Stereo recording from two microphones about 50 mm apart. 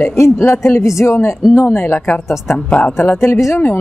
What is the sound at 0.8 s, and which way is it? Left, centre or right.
Speech, left.